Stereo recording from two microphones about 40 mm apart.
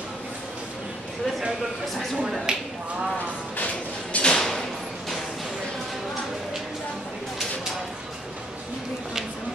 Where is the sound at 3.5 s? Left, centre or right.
Left.